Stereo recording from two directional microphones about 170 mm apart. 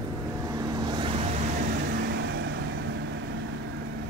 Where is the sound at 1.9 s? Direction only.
75° right (ahead or behind).